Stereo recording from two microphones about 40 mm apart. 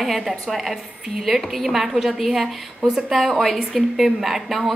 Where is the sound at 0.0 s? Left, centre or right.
Centre.